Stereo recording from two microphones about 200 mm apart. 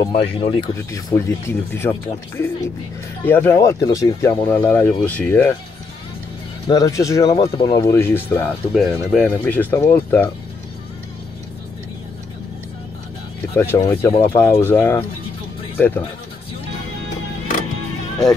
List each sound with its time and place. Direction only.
0.1 s speech: 25° left (ahead or behind)
0.9 s speech: 15° left (ahead or behind)
6.7 s speech: 15° left (ahead or behind)
13.6 s speech: 15° left (ahead or behind)